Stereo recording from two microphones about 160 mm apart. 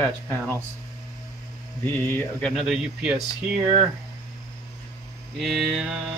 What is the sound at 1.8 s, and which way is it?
Speech, 10° left (ahead or behind).